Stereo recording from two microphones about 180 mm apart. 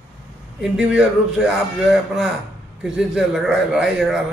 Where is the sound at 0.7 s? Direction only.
5° right (ahead or behind).